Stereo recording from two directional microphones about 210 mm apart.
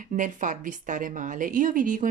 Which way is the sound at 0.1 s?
35° right (ahead or behind).